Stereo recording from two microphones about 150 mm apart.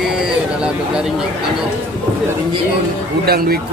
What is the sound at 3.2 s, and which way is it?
Speech, 90° right.